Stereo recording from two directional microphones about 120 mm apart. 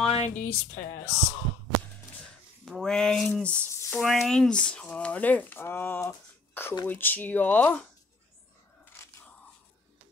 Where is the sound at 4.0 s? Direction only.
Centre (ahead or behind).